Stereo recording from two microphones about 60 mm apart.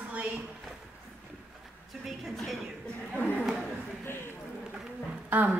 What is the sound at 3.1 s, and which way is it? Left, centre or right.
Speech, left.